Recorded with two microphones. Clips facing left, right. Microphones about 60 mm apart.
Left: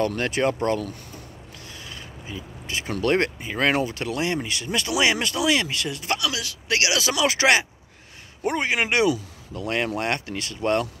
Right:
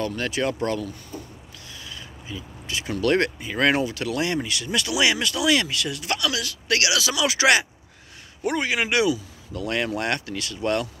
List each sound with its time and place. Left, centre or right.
0.0 s speech: left
0.4 s speech: left
1.7 s a sound: left
2.6 s speech: left
3.1 s speech: left
3.8 s speech: left
4.1 s speech: left
6.9 s speech: left